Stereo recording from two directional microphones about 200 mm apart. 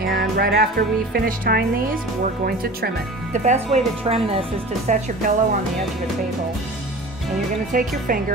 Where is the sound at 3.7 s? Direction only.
30° right (ahead or behind).